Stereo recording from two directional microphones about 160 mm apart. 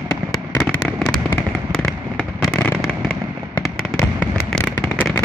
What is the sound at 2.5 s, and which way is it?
Fireworks, 10° left (ahead or behind).